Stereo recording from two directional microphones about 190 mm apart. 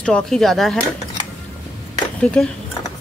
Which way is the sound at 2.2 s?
5° left (ahead or behind).